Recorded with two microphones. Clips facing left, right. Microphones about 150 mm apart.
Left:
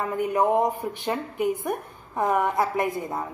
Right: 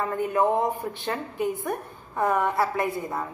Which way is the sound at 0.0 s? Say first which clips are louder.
Even; 15° left (ahead or behind).